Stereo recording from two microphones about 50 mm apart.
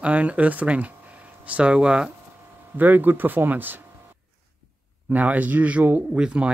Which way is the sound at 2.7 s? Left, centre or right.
Right.